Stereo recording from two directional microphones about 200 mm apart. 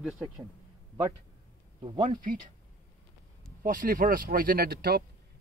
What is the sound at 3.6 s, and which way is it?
Speech, 40° right (ahead or behind).